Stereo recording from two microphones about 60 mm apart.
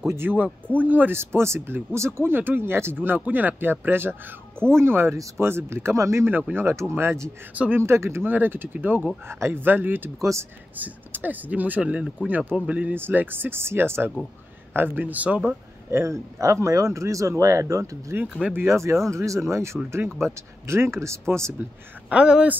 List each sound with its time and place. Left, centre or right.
0.1 s speech: right
1.1 s speech: right
4.1 s speech: centre
4.7 s speech: right
8.3 s speech: right
12.9 s speech: right
15.9 s speech: right
22.1 s speech: centre